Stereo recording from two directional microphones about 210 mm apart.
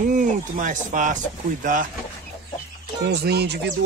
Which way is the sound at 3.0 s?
50° right (ahead or behind).